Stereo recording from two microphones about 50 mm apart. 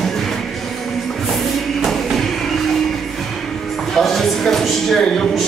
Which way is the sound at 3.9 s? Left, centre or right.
Centre.